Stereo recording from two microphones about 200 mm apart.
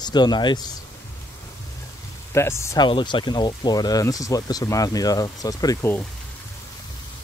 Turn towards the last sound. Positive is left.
turn(degrees=10)  # may be behind; listen again after turning